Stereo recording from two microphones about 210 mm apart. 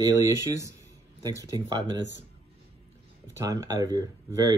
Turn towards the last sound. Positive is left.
turn(degrees=-15)  # may be behind; listen again after turning